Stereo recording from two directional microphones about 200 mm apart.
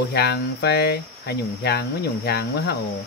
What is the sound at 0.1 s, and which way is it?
Cricket, 55° left (ahead or behind).